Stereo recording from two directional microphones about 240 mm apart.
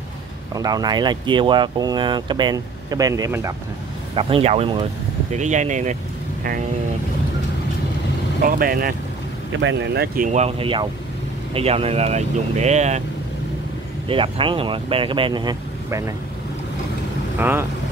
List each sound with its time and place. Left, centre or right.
0.6 s speech: centre
4.1 s speech: right
8.4 s speech: right
9.5 s speech: right
10.1 s speech: right
14.0 s speech: right
17.4 s speech: centre